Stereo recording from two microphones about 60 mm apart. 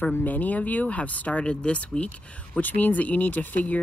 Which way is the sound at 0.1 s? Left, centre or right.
Left.